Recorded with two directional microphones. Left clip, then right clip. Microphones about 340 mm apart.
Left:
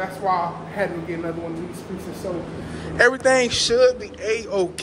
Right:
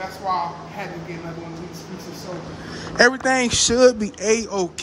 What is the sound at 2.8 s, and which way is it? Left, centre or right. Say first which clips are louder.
Speech: even; centre.